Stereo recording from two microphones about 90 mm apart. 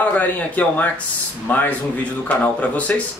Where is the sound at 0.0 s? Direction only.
15° left (ahead or behind).